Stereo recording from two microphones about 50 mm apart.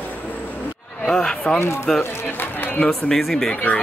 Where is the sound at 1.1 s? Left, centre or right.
Centre.